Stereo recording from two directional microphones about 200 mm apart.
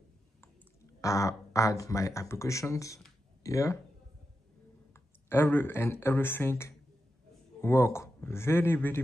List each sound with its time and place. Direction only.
1.0 s speech: 15° left (ahead or behind)
4.9 s speech: 10° left (ahead or behind)